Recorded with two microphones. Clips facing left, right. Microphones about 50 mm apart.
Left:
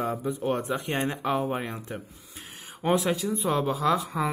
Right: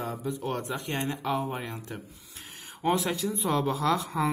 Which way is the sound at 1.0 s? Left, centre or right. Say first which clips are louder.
Left 1 dB; left.